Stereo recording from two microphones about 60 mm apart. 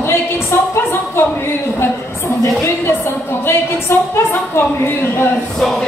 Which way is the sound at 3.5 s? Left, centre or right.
Left.